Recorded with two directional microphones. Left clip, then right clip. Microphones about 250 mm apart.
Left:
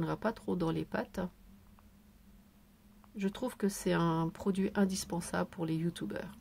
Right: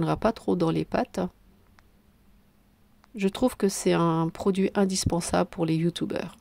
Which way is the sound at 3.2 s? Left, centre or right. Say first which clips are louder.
Right 11 dB; right.